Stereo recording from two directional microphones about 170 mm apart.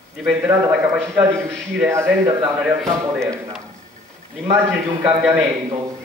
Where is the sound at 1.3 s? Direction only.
5° left (ahead or behind).